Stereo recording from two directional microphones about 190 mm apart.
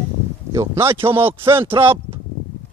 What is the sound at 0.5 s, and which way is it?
Speech, 15° right (ahead or behind).